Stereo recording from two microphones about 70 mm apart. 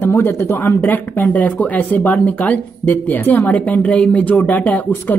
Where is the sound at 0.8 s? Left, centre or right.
Left.